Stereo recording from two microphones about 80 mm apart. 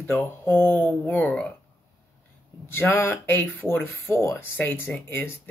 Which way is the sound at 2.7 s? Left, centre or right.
Left.